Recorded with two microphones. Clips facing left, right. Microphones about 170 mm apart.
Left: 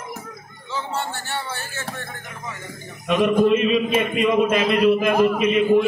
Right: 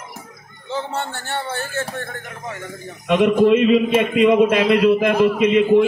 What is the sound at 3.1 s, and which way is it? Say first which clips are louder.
Speech: right 3 dB; 80° right.